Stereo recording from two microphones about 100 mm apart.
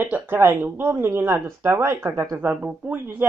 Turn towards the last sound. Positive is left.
turn(degrees=-20)  # may be behind; listen again after turning